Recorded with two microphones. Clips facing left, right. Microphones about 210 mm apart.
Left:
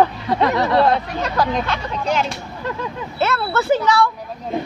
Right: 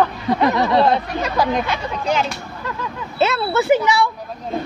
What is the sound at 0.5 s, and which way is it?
Speech, 15° right (ahead or behind).